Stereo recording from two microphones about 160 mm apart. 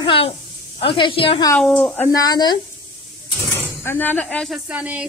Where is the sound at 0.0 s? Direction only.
35° left (ahead or behind).